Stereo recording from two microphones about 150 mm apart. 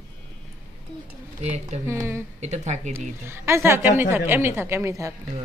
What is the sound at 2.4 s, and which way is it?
Speech, 50° right (ahead or behind).